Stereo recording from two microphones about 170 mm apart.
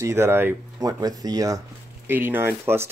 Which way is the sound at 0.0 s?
15° right (ahead or behind).